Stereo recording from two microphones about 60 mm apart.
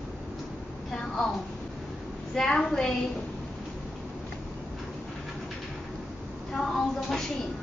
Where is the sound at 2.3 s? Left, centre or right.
Centre.